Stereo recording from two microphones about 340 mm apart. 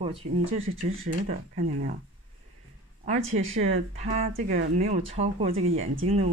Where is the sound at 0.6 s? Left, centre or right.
Right.